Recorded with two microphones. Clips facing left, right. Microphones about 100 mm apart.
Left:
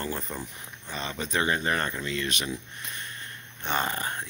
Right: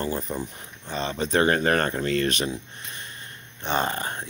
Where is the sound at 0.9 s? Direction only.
30° right (ahead or behind).